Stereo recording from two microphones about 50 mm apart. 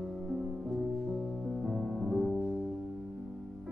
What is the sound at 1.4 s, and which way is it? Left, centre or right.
Music, centre.